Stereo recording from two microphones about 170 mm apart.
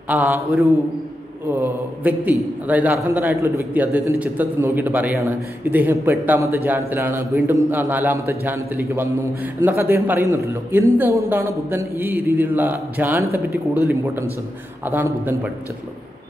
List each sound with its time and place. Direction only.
0.1 s a man's voice: 10° right (ahead or behind)
1.5 s a man's voice: 10° right (ahead or behind)